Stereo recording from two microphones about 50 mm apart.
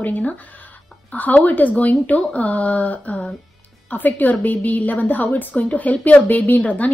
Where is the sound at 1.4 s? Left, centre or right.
Left.